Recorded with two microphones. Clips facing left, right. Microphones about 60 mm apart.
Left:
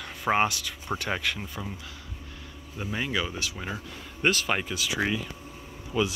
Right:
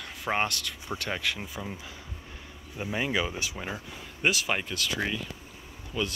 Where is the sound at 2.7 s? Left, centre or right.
Centre.